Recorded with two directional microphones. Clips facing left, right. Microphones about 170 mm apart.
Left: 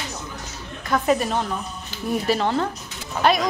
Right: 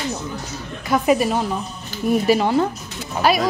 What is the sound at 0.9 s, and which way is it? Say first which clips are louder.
A woman's voice: right 3 dB; 10° right (ahead or behind).